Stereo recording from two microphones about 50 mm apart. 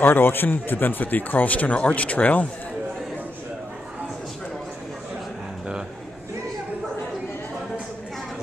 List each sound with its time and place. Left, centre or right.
0.0 s a man's voice: left